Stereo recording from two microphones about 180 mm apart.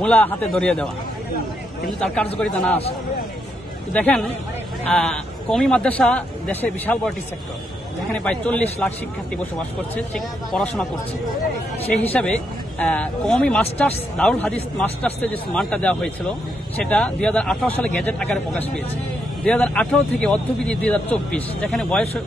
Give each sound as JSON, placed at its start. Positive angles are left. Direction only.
{"t": 0.0, "sound": "speech", "side_deg": 10}
{"t": 1.9, "sound": "speech", "side_deg": 5}
{"t": 3.9, "sound": "speech", "side_deg": 5}
{"t": 9.9, "sound": "speech", "side_deg": 5}
{"t": 12.1, "sound": "speech", "side_deg": 5}